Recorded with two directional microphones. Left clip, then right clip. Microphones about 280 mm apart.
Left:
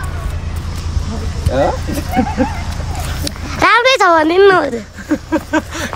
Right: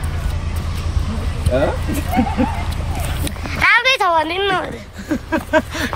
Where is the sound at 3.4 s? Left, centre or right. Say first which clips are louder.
Left 3 dB; centre.